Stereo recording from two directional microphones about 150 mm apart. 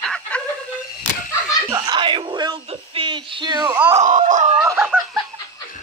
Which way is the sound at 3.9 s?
55° right (ahead or behind).